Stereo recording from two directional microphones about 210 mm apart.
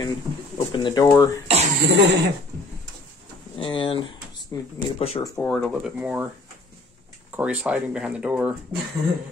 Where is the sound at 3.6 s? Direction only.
25° left (ahead or behind).